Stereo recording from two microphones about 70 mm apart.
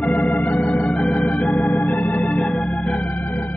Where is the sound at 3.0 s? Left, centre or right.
Left.